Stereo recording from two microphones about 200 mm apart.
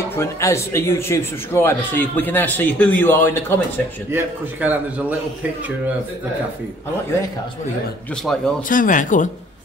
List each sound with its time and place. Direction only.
0.1 s a man's voice: 15° left (ahead or behind)
4.1 s a man's voice: 10° right (ahead or behind)
8.1 s speech: centre (ahead or behind)
8.6 s speech: 40° left (ahead or behind)